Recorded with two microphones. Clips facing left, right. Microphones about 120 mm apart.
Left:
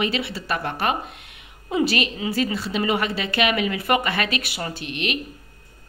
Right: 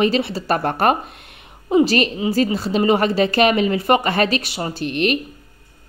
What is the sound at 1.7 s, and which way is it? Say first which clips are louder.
Speech: right 7 dB; 35° right (ahead or behind).